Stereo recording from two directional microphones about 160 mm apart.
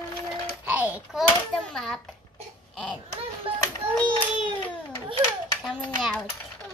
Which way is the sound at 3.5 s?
35° right (ahead or behind).